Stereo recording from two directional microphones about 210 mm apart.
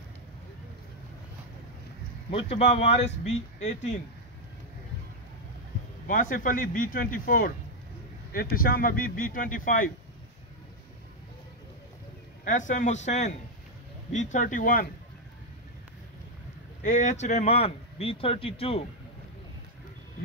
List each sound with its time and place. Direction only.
2.3 s speech: 30° left (ahead or behind)
6.0 s speech: 40° left (ahead or behind)
12.4 s speech: 35° left (ahead or behind)
16.8 s speech: 35° left (ahead or behind)